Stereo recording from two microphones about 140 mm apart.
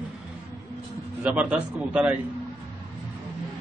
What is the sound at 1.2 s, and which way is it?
Speech, 10° right (ahead or behind).